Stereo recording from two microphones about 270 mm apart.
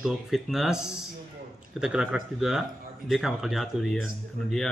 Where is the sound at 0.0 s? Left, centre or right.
Centre.